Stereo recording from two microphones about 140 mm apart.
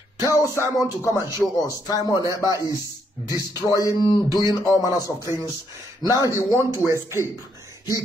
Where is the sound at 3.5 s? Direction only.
25° left (ahead or behind).